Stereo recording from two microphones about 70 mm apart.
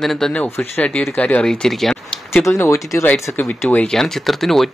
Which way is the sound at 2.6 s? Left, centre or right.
Left.